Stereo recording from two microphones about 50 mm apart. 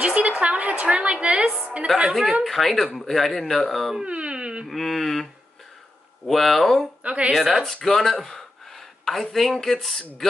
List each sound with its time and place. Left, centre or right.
0.0 s a sound: right
0.4 s a woman's voice: right
1.9 s speech: centre
4.0 s dog: right
4.6 s speech: centre
7.0 s a woman's voice: right
7.2 s speech: centre
7.6 s speech: centre